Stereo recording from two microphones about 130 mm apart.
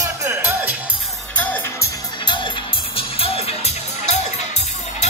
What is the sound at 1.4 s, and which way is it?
Music, 15° left (ahead or behind).